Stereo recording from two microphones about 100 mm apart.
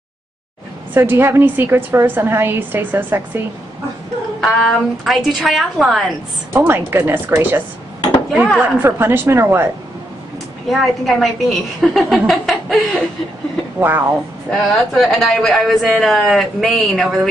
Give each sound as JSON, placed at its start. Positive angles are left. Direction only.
{"t": 0.9, "sound": "a woman's voice", "side_deg": -20}
{"t": 4.4, "sound": "a woman's voice", "side_deg": 0}
{"t": 6.5, "sound": "a woman's voice", "side_deg": -20}
{"t": 8.3, "sound": "a woman's voice", "side_deg": 0}
{"t": 8.5, "sound": "a woman's voice", "side_deg": -20}
{"t": 10.7, "sound": "a woman's voice", "side_deg": 0}
{"t": 13.7, "sound": "a woman's voice", "side_deg": -20}
{"t": 14.5, "sound": "a woman's voice", "side_deg": 0}